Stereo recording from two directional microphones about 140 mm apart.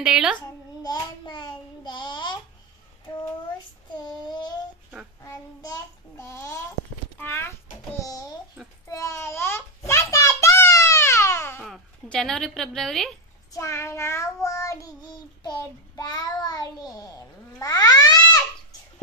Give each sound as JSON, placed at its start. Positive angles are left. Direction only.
{"t": 0.0, "sound": "a child's voice", "side_deg": -5}
{"t": 0.8, "sound": "a sound", "side_deg": 30}
{"t": 5.2, "sound": "child singing", "side_deg": 25}
{"t": 6.1, "sound": "a sound", "side_deg": 20}
{"t": 11.6, "sound": "a woman's voice", "side_deg": 0}
{"t": 13.5, "sound": "child singing", "side_deg": 20}
{"t": 17.6, "sound": "cat", "side_deg": 30}